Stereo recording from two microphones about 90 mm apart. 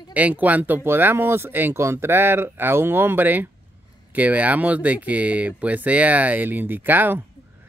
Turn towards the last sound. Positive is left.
turn(degrees=-20)  # may be behind; listen again after turning